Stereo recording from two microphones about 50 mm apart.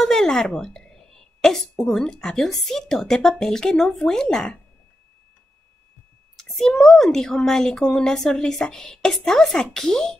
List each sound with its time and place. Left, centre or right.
0.0 s a sound: centre
2.0 s a woman's voice: centre
6.3 s a woman's voice: centre